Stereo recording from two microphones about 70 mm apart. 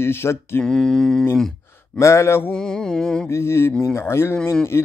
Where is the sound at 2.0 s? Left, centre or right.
Left.